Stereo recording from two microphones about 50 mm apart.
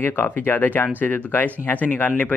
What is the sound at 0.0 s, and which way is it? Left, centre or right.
Speech, left.